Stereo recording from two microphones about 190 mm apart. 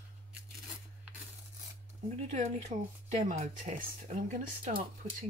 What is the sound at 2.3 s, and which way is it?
Speech, 40° right (ahead or behind).